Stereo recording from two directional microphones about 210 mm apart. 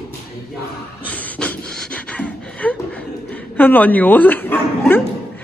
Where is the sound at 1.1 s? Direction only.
5° left (ahead or behind).